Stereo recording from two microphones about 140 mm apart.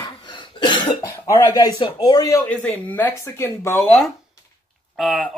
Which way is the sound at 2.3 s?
10° left (ahead or behind).